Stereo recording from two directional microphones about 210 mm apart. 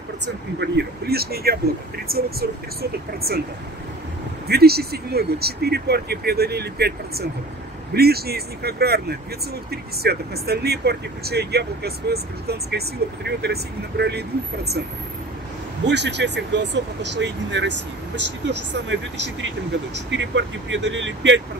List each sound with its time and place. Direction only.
0.6 s speech: 50° right (ahead or behind)
4.5 s speech: 50° right (ahead or behind)
15.9 s speech: 55° right (ahead or behind)